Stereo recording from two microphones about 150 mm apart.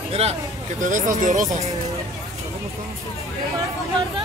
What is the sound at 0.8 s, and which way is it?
Speech, 60° right (ahead or behind).